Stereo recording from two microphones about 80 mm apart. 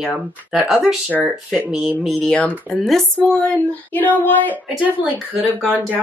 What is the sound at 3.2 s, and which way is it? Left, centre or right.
Child singing, centre.